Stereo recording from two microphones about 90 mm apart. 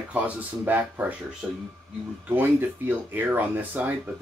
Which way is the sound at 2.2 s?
20° right (ahead or behind).